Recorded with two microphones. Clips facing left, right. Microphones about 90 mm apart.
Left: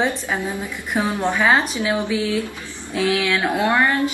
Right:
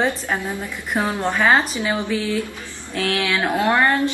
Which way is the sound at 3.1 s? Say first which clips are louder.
Left 1 dB; centre (ahead or behind).